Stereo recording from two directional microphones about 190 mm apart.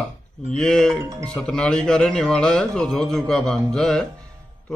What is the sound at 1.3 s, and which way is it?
A man's voice, 5° left (ahead or behind).